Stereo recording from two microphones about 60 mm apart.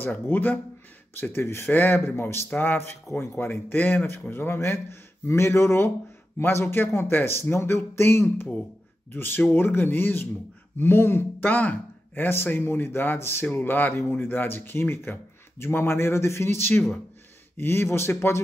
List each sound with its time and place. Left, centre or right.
0.0 s speech: left
1.3 s a man's voice: left
1.7 s speech: left
2.1 s a man's voice: left
9.1 s speech: left
11.4 s a man's voice: left